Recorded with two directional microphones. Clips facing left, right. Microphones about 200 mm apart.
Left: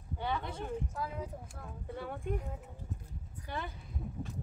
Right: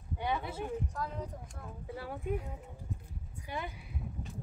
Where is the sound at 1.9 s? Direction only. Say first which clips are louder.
Right 1 dB; 5° right (ahead or behind).